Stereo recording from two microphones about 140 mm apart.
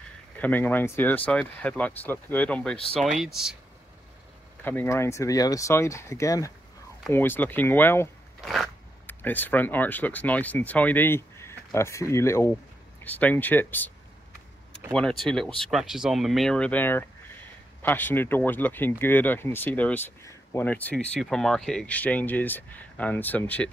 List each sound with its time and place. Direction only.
0.4 s speech: 10° left (ahead or behind)
4.6 s speech: 15° left (ahead or behind)
8.4 s a sound: centre (ahead or behind)
9.0 s speech: 15° left (ahead or behind)